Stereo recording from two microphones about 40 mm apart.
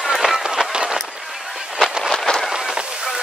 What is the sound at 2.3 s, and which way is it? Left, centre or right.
Run, left.